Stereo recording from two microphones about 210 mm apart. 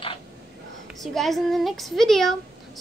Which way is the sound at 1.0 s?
Centre (ahead or behind).